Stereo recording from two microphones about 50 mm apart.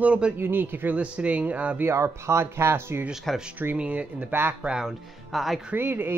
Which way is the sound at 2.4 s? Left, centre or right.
Right.